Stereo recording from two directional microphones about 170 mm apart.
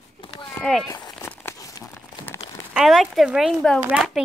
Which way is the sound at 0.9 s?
20° left (ahead or behind).